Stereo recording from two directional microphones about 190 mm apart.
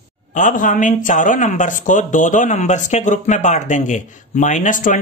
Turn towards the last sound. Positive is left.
turn(degrees=45)  # may be behind; listen again after turning